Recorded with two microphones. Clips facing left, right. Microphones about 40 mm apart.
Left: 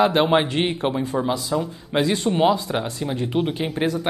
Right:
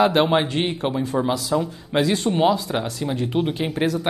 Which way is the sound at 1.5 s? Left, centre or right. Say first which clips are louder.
Right 1 dB; centre.